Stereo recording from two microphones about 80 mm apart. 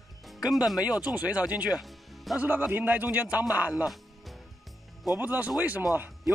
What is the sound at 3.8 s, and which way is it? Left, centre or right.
Music, centre.